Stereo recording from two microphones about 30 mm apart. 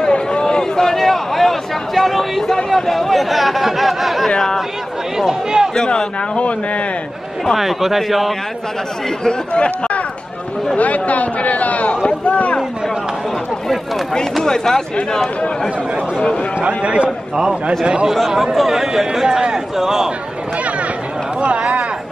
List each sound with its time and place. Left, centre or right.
0.0 s a sound: left; by 2.5 s centre
2.7 s speech: centre
5.1 s speech: centre
5.9 s a man's voice: left
7.5 s speech: centre
9.5 s speech: left
10.8 s a man's voice: left
14.4 s speech: centre
16.6 s a man's voice: right
18.3 s speech: centre
19.2 s a man's voice: right
19.5 s speech: centre